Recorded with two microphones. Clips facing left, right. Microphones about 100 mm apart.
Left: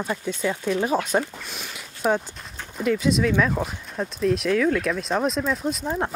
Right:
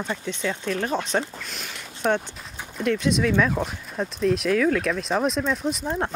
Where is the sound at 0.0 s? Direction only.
10° left (ahead or behind).